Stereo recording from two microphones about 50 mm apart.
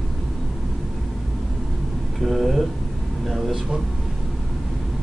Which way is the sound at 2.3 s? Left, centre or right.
Centre.